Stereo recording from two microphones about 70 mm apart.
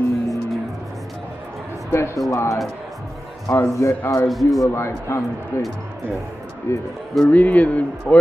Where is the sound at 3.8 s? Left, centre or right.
Left.